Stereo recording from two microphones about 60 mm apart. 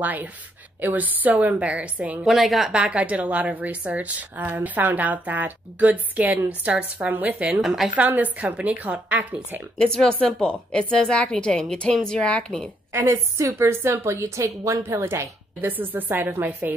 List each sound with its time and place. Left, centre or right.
0.0 s a woman's voice: right
2.2 s a woman's voice: centre
2.7 s a woman's voice: right
7.6 s a woman's voice: centre
8.1 s a woman's voice: right
9.8 s a woman's voice: centre
12.9 s a woman's voice: right
14.9 s a woman's voice: right
15.6 s a woman's voice: right